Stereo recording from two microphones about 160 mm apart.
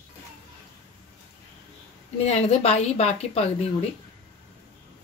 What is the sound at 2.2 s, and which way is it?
Speech, 40° left (ahead or behind).